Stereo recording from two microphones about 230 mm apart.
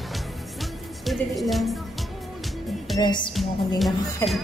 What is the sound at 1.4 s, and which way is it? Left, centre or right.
Speech, centre.